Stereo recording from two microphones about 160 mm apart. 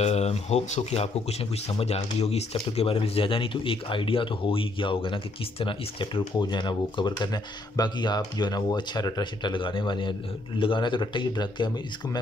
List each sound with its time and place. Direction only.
0.0 s speech: 40° left (ahead or behind); by 12.2 s 25° left (ahead or behind)